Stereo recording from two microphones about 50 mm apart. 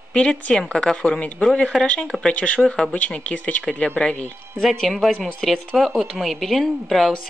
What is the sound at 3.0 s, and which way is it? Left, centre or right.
Speech, left.